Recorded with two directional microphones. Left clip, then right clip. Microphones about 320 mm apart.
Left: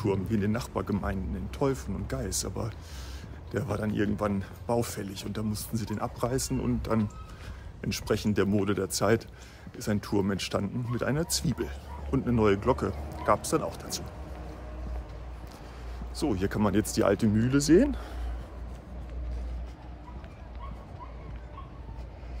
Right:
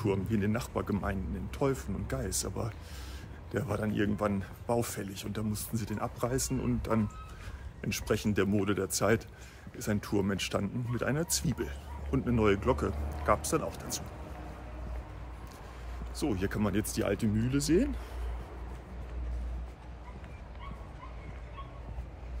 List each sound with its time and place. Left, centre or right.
0.0 s speech: centre
16.2 s speech: centre